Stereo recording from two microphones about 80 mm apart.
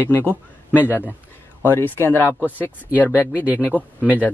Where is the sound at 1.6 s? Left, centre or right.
Left.